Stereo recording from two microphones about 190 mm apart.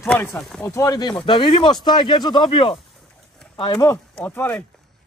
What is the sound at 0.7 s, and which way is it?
Speech, 15° left (ahead or behind).